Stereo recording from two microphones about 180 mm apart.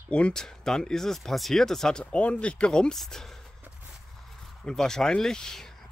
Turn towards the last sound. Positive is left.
turn(degrees=5)  # may be behind; listen again after turning